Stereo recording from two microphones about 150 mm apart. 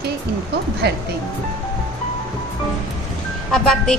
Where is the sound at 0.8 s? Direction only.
90° right.